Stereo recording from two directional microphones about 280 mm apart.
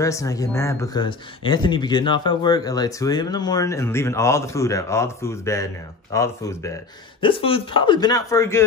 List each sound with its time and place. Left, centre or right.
0.0 s speech: centre